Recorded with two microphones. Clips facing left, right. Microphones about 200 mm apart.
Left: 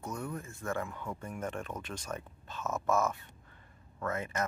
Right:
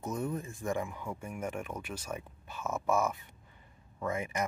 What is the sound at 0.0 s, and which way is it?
Speech, 20° right (ahead or behind).